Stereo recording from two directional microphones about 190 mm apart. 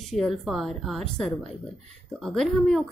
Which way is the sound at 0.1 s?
Centre (ahead or behind).